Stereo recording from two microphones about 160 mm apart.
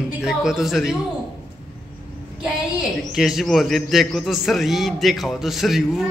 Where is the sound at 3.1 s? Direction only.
5° right (ahead or behind).